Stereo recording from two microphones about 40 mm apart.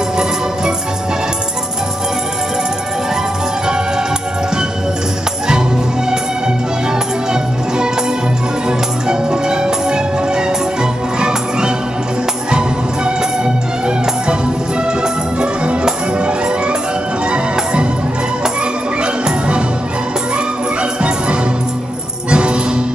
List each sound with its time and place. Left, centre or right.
8.6 s music: right
15.6 s music: right
22.3 s music: right